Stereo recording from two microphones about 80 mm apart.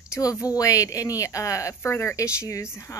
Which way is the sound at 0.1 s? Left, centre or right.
Left.